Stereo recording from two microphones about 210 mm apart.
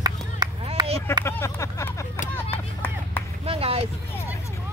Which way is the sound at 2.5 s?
10° left (ahead or behind).